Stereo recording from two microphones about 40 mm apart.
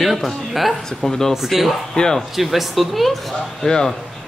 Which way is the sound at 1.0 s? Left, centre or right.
Centre.